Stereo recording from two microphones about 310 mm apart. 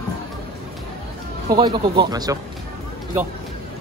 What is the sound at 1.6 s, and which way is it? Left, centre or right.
Speech, centre.